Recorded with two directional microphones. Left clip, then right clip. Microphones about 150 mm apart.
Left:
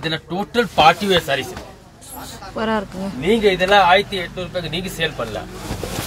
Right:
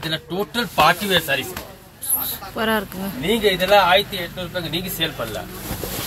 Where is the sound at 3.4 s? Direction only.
35° left (ahead or behind).